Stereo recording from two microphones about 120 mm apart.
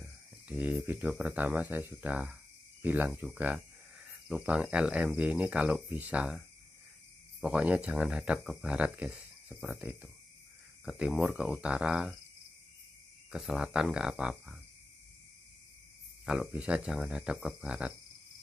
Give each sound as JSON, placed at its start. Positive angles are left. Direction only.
{"t": 0.0, "sound": "speech", "side_deg": -10}
{"t": 10.9, "sound": "speech", "side_deg": -5}
{"t": 13.3, "sound": "speech", "side_deg": 0}
{"t": 16.3, "sound": "speech", "side_deg": -5}